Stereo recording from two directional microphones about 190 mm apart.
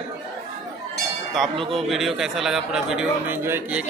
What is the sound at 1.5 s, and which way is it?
Speech, 30° right (ahead or behind).